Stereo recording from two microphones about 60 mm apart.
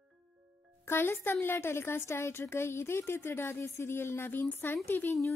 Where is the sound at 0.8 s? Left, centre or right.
Left.